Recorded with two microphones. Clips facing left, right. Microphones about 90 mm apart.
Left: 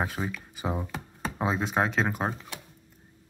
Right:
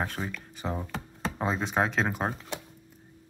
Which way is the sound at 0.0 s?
5° left (ahead or behind).